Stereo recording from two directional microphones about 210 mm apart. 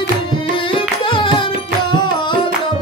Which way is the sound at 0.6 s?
25° left (ahead or behind).